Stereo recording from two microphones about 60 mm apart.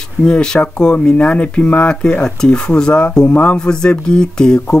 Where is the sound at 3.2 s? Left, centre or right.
Left.